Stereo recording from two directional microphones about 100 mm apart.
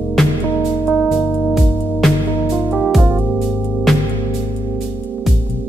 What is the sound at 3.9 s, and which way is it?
Music, centre (ahead or behind).